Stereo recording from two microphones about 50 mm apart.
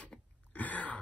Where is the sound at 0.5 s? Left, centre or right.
Left.